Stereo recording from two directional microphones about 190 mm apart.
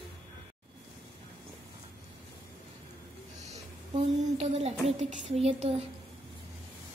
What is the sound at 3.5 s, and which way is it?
A woman's voice, 30° right (ahead or behind).